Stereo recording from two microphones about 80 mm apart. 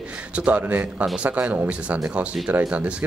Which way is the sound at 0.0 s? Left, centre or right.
Centre.